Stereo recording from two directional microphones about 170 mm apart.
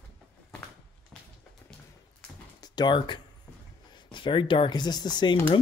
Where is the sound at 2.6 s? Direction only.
25° left (ahead or behind).